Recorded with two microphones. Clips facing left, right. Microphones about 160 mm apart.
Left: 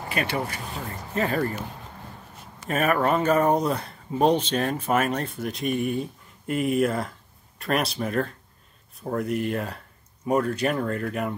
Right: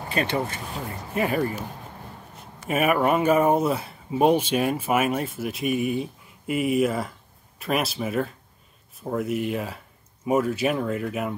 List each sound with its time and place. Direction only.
0.1 s speech: 25° right (ahead or behind)
1.1 s speech: 15° right (ahead or behind)
2.7 s speech: 10° right (ahead or behind)